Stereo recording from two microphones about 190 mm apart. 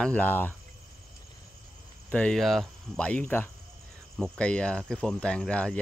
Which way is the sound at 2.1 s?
5° left (ahead or behind).